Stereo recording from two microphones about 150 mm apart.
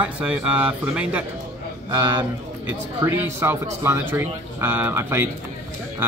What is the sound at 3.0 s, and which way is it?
Speech, 15° right (ahead or behind).